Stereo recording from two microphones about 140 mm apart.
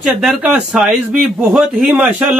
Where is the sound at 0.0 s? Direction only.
5° right (ahead or behind).